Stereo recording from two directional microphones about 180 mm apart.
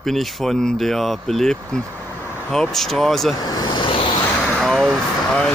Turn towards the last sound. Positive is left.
turn(degrees=5)  # may be behind; listen again after turning